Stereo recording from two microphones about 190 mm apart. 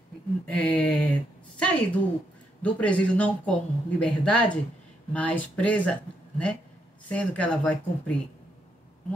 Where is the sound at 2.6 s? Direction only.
5° left (ahead or behind).